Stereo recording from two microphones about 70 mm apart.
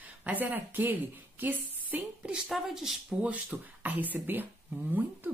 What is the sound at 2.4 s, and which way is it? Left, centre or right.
Speech, centre.